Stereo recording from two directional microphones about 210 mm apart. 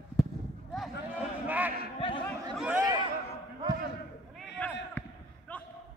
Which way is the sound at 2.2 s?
Centre (ahead or behind).